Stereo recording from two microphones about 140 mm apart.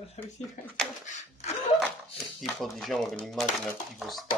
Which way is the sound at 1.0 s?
55° left (ahead or behind).